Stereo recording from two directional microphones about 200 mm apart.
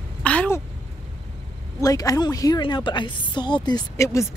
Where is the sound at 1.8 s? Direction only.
15° left (ahead or behind).